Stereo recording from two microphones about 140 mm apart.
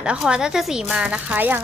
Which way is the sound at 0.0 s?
5° right (ahead or behind).